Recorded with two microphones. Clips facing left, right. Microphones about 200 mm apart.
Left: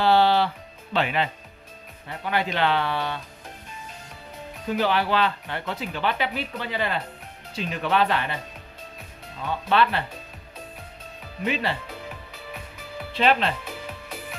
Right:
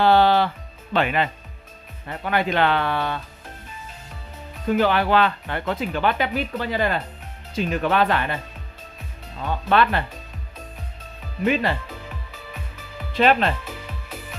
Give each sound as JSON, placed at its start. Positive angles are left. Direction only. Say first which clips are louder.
{"t": 0.0, "sound": "music", "louder": "right 3 dB", "side_deg": -50}
{"t": 0.9, "sound": "speech", "louder": "right 3 dB", "side_deg": -55}
{"t": 4.6, "sound": "speech", "louder": "right 4 dB", "side_deg": -50}
{"t": 9.7, "sound": "speech", "louder": "right 2 dB", "side_deg": -50}
{"t": 11.4, "sound": "speech", "louder": "right 5 dB", "side_deg": -50}
{"t": 13.1, "sound": "speech", "louder": "right 3 dB", "side_deg": -50}